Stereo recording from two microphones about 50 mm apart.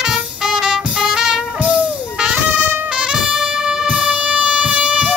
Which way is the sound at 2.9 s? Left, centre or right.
Centre.